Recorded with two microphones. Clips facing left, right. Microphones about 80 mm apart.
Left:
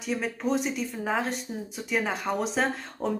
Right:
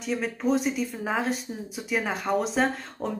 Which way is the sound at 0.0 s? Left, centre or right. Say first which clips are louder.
Right 2 dB; centre.